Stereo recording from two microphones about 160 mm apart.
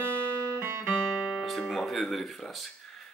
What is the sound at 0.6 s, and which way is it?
Music, 15° right (ahead or behind).